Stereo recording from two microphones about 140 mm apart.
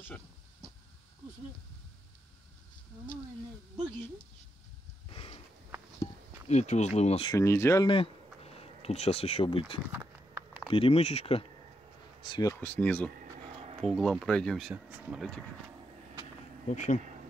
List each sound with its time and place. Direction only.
6.5 s speech: 55° left (ahead or behind)
7.3 s speech: 20° left (ahead or behind)
7.8 s speech: 40° left (ahead or behind)
12.3 s speech: 25° left (ahead or behind)
12.5 s speech: 10° left (ahead or behind)
14.7 s speech: 10° right (ahead or behind)
16.6 s speech: 60° left (ahead or behind)